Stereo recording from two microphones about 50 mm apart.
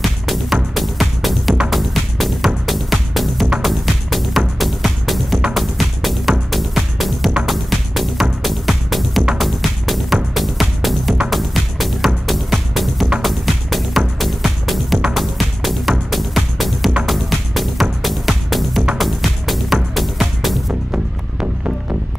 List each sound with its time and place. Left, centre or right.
0.0 s music: centre
21.4 s music: right